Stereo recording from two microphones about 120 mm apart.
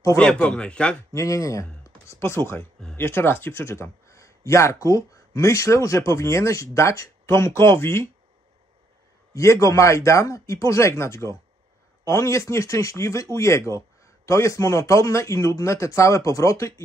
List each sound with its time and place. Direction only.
0.2 s speech: 10° left (ahead or behind)
1.1 s speech: 25° left (ahead or behind)
9.3 s speech: 25° left (ahead or behind)